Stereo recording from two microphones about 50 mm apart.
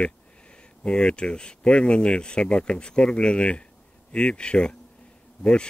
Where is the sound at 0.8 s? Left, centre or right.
Left.